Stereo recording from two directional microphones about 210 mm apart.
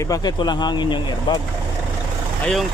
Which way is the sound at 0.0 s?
15° left (ahead or behind).